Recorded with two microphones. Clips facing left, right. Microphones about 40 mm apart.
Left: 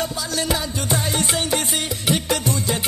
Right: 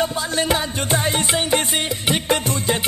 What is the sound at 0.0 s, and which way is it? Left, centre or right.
Music, right.